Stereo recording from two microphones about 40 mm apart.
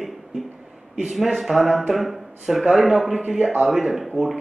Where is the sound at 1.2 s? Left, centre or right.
Centre.